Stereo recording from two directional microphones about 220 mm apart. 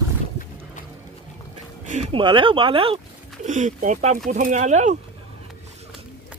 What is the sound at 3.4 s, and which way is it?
Speech, 35° right (ahead or behind).